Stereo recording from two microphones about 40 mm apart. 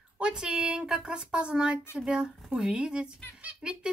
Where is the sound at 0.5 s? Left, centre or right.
Right.